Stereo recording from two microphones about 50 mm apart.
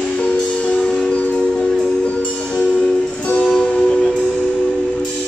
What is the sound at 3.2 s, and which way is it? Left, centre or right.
Music, left.